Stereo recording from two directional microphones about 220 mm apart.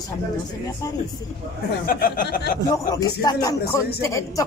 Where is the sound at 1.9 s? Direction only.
40° left (ahead or behind).